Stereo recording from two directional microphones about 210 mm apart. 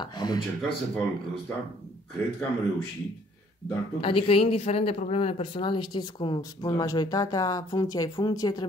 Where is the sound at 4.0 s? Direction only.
25° left (ahead or behind).